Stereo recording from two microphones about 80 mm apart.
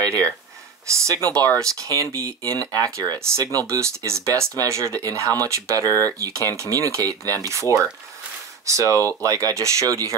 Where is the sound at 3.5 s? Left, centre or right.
Right.